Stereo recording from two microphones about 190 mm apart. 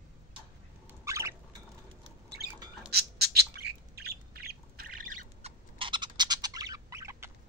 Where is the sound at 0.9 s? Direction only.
15° right (ahead or behind).